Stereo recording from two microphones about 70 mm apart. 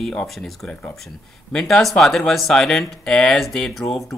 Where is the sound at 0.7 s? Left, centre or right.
Left.